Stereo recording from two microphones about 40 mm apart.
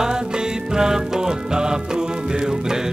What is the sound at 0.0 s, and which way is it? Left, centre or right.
Music, centre.